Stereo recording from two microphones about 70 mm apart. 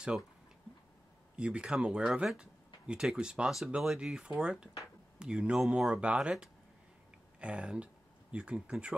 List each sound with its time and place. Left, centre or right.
1.3 s speech: centre
7.3 s speech: centre